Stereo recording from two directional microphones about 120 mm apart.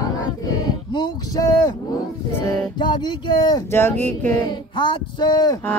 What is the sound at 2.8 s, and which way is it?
Speech, 40° left (ahead or behind).